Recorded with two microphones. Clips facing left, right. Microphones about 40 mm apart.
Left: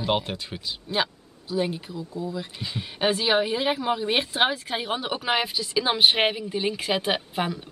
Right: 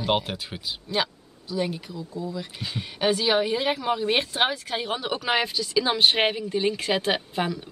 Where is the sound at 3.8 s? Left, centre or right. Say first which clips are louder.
Even; centre.